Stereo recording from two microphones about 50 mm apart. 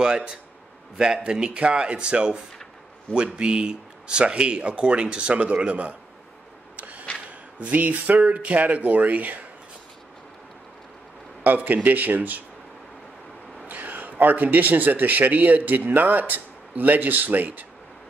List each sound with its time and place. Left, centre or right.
0.0 s speech: centre
3.3 s speech: centre
6.8 s a sound: right
7.5 s speech: right
11.4 s speech: right
13.7 s speech: right